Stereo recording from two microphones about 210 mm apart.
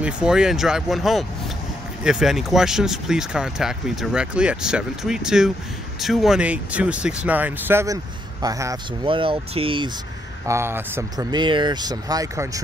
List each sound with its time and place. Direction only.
0.0 s speech: 5° right (ahead or behind); by 9.8 s 25° right (ahead or behind)
10.4 s speech: 10° right (ahead or behind)